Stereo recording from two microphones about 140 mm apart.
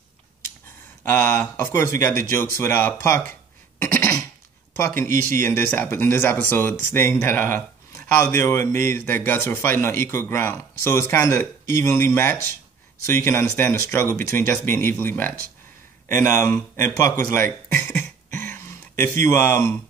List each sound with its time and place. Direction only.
1.0 s speech: 15° left (ahead or behind)
3.8 s cough: 15° left (ahead or behind)
4.7 s speech: 15° left (ahead or behind)